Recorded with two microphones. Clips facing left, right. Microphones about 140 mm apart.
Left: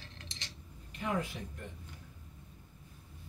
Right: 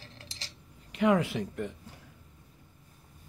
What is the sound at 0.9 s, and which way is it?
Speech, 90° right.